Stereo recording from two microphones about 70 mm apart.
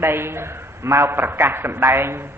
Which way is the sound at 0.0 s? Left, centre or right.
Right.